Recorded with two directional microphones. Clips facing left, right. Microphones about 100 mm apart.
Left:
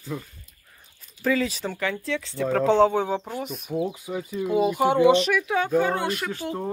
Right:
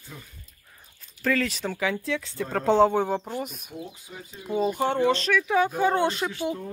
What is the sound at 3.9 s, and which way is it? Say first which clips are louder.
Speech: left 12 dB; 85° left.